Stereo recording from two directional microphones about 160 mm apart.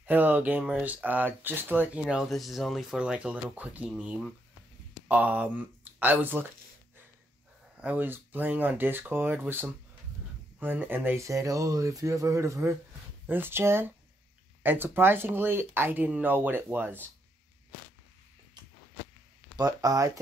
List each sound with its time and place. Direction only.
0.0 s speech: 10° right (ahead or behind)
7.8 s speech: 10° right (ahead or behind)
19.5 s speech: 20° right (ahead or behind)